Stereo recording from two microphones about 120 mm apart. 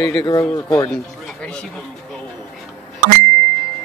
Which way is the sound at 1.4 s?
5° left (ahead or behind).